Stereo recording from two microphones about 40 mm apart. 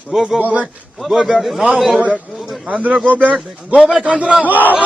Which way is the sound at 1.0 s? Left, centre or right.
Centre.